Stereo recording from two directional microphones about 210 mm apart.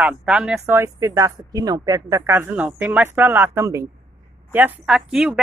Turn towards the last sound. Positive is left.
turn(degrees=-5)  # may be behind; listen again after turning